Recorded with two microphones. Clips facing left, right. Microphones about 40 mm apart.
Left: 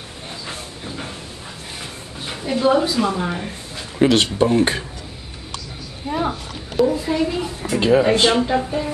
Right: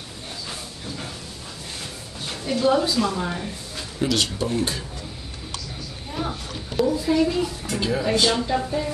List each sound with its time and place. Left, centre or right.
0.5 s a sound: left
2.2 s a woman's voice: centre
4.0 s speech: left
6.0 s a sound: left
7.1 s a woman's voice: centre
7.8 s speech: left; by 8.9 s centre